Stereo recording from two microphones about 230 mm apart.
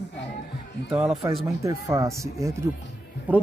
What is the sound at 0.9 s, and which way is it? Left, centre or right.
Speech, centre.